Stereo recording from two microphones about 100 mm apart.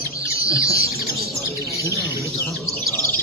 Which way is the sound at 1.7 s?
30° left (ahead or behind).